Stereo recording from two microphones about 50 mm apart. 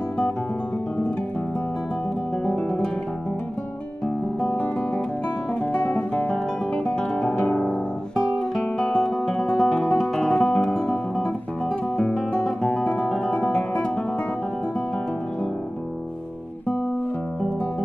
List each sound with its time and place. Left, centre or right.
2.4 s guitar: left
4.4 s guitar: left
7.4 s music: left
8.8 s guitar: centre
9.5 s music: centre